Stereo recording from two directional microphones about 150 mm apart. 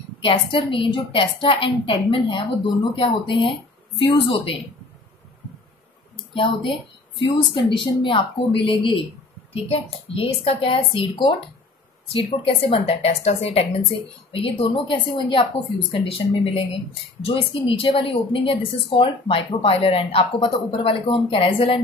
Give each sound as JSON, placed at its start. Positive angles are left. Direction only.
{"t": 0.2, "sound": "a woman's voice", "side_deg": 35}
{"t": 6.3, "sound": "a woman's voice", "side_deg": 35}